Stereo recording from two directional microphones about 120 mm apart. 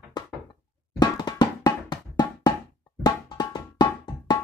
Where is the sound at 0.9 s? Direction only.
35° left (ahead or behind).